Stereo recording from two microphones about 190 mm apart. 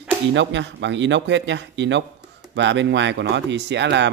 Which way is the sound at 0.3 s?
70° right (ahead or behind).